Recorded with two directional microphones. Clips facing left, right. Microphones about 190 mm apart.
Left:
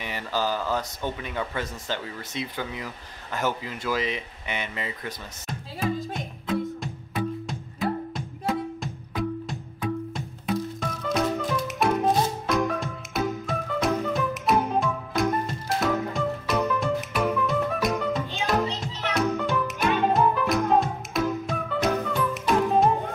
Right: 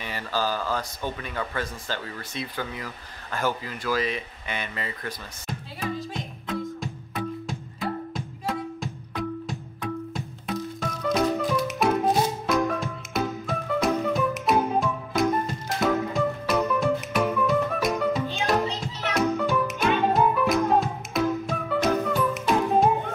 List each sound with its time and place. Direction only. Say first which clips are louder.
0.0 s speech: even; 20° left (ahead or behind)
6.4 s music: left 3 dB; centre (ahead or behind)
19.1 s music: right 2 dB; centre (ahead or behind)